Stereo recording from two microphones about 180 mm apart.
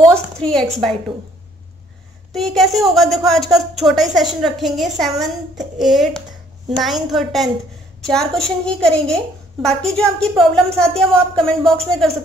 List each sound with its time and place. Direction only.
0.1 s a woman's voice: 5° left (ahead or behind)
2.3 s a woman's voice: centre (ahead or behind)